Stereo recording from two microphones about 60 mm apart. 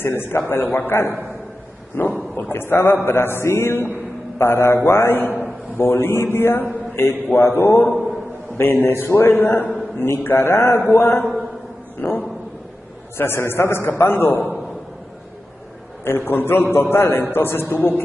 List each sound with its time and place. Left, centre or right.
0.0 s a man's voice: left
12.0 s a sound: left
13.2 s a man's voice: left
16.0 s a man's voice: left